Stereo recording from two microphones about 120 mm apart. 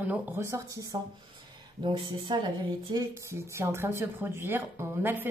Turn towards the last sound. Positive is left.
turn(degrees=-15)  # may be behind; listen again after turning